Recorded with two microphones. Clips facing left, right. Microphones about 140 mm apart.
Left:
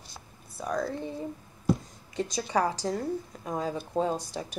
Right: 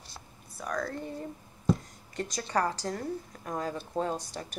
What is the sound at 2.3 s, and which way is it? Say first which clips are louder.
A woman's voice: left 2 dB; 10° left (ahead or behind).